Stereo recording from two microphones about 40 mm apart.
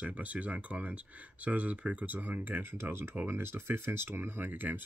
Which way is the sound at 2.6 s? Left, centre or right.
Right.